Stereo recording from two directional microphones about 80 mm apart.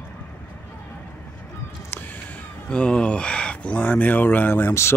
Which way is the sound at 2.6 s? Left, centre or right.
Centre.